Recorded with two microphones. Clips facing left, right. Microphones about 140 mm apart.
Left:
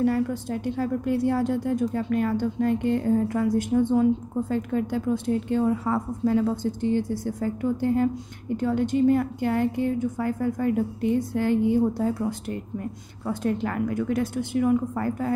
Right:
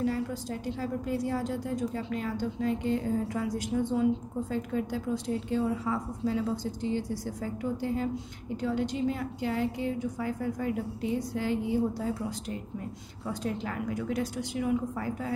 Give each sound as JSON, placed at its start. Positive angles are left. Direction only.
{"t": 0.0, "sound": "a woman's voice", "side_deg": 55}